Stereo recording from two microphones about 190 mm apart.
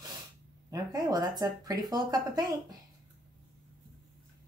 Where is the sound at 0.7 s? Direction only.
20° right (ahead or behind).